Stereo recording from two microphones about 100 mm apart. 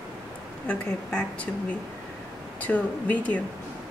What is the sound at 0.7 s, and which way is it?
A woman's voice, 15° left (ahead or behind).